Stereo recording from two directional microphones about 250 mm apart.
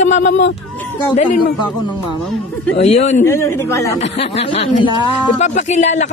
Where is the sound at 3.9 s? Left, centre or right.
Left.